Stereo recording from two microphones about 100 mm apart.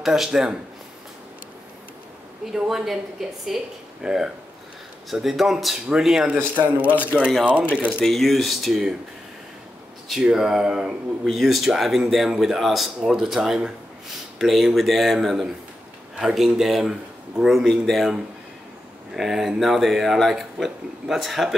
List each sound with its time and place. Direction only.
0.0 s speech: 5° right (ahead or behind)
2.5 s speech: 5° right (ahead or behind)
6.6 s speech: 15° right (ahead or behind)
7.0 s speech: 15° left (ahead or behind)
8.0 s speech: centre (ahead or behind)
10.0 s speech: 5° right (ahead or behind)